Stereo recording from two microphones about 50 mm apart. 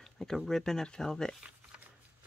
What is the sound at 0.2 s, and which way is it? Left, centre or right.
Speech, centre.